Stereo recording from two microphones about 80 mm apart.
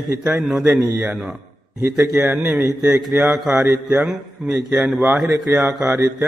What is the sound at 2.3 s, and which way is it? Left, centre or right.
A man's voice, centre.